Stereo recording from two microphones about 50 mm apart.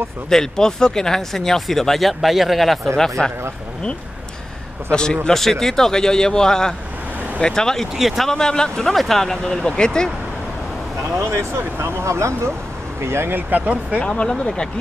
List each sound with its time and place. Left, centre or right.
0.3 s speech: centre
4.9 s speech: centre
11.1 s speech: right
13.0 s speech: right
13.5 s speech: right
14.0 s speech: centre